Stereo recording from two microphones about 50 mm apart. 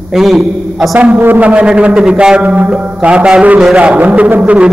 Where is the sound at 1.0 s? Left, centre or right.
Right.